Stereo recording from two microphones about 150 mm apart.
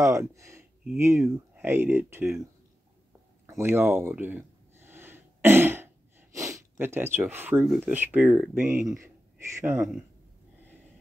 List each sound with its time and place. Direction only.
0.0 s speech: 20° right (ahead or behind)
3.4 s a sound: 15° right (ahead or behind)
7.8 s speech: 15° right (ahead or behind)